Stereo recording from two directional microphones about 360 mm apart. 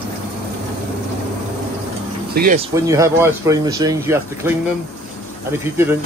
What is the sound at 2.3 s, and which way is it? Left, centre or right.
Speech, right.